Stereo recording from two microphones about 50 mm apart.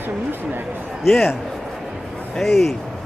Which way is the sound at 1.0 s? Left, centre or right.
Centre.